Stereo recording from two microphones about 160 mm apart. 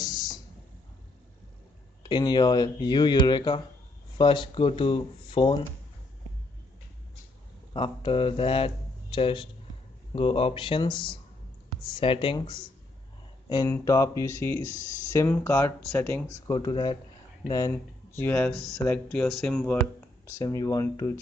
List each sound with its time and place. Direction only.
0.0 s a sound: 25° left (ahead or behind)
2.0 s speech: 30° left (ahead or behind)
7.7 s speech: 30° left (ahead or behind); by 16.3 s 10° left (ahead or behind)
16.4 s speech: 25° left (ahead or behind)
18.3 s speech: 5° left (ahead or behind)
20.2 s speech: 20° left (ahead or behind)